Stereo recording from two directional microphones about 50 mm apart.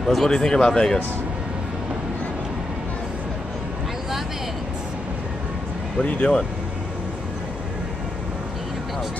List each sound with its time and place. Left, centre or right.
0.0 s speech: centre
6.0 s speech: left